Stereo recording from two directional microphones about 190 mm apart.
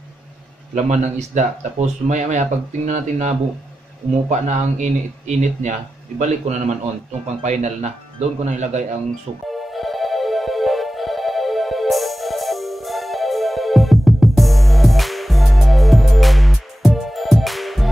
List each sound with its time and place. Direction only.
0.7 s speech: 40° right (ahead or behind)
9.8 s music: centre (ahead or behind)